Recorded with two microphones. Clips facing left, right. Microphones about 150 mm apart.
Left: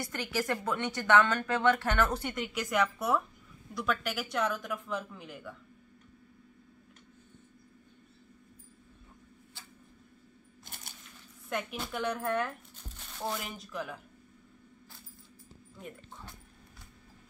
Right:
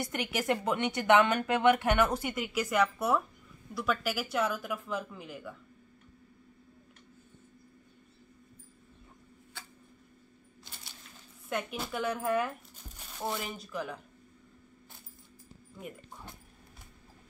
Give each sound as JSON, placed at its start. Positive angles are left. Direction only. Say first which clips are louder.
{"t": 0.0, "sound": "speech", "louder": "right 1 dB", "side_deg": -20}
{"t": 10.6, "sound": "coin", "louder": "left 1 dB", "side_deg": 50}
{"t": 11.4, "sound": "speech", "louder": "right 1 dB", "side_deg": 0}